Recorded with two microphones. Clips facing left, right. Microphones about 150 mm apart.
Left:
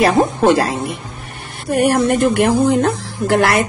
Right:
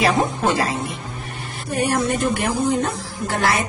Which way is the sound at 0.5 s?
60° left (ahead or behind).